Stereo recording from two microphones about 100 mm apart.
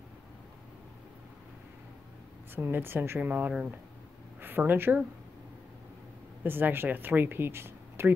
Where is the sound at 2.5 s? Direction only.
20° right (ahead or behind).